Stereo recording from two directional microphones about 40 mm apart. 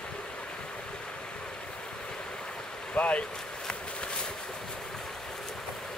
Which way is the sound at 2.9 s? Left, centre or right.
Left.